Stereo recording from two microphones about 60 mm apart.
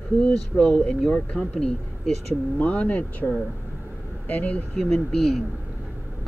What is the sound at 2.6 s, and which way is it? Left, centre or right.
Speech, left.